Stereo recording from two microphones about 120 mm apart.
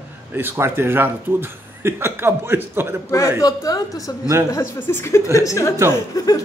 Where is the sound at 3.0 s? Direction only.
25° left (ahead or behind).